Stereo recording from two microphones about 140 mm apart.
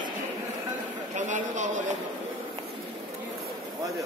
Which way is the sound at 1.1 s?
60° right (ahead or behind).